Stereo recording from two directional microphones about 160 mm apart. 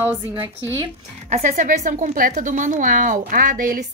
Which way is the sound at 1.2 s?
50° right (ahead or behind).